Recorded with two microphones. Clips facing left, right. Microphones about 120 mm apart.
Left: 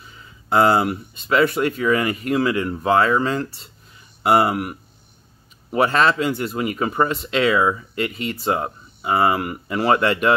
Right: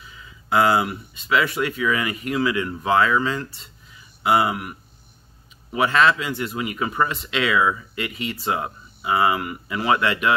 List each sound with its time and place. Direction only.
0.5 s speech: 40° left (ahead or behind)